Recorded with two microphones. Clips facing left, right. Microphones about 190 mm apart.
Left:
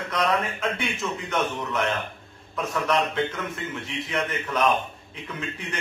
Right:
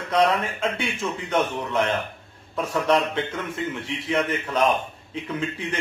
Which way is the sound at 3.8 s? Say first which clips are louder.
Right 3 dB; 30° right (ahead or behind).